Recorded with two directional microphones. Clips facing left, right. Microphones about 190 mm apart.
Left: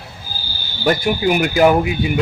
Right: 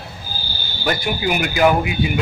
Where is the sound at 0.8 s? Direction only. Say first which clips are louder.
Left 5 dB; 40° left (ahead or behind).